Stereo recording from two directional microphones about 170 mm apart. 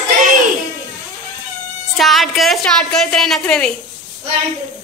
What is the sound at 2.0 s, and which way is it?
A woman's voice, centre (ahead or behind).